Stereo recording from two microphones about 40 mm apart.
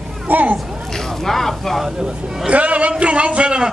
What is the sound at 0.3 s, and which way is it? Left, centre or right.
Speech, right.